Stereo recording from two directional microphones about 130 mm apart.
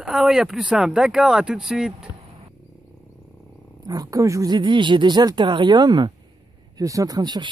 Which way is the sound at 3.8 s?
30° right (ahead or behind).